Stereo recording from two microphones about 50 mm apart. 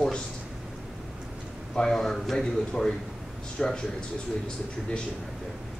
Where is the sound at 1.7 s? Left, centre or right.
Centre.